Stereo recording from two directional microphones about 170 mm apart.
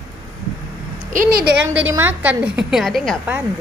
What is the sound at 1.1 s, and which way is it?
Speech, 55° right (ahead or behind).